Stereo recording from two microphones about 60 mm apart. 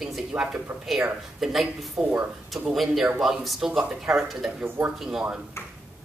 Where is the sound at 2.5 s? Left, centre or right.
Centre.